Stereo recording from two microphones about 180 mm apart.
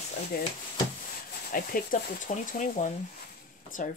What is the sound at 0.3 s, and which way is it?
Speech, 55° left (ahead or behind).